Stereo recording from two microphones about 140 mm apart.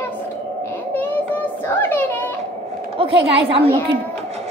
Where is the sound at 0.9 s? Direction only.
15° left (ahead or behind).